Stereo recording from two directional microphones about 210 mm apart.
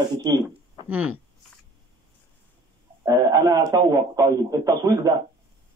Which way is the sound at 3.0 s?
20° right (ahead or behind).